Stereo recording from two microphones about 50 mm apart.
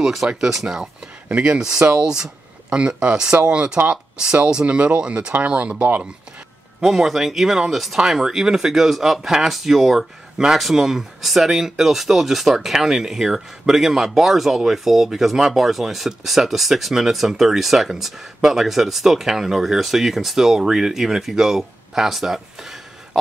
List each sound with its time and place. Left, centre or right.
0.0 s speech: centre; by 6.0 s right
6.8 s speech: centre